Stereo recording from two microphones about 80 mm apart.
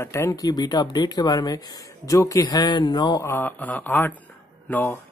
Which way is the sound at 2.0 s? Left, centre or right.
Left.